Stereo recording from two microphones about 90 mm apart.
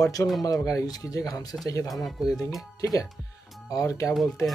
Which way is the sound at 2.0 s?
Centre (ahead or behind).